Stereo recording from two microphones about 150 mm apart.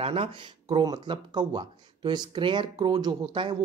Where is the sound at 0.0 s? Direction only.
40° right (ahead or behind).